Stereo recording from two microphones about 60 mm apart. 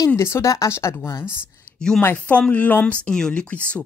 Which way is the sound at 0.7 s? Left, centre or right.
Left.